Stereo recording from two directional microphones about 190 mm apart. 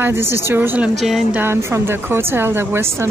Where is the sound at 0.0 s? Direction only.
15° right (ahead or behind).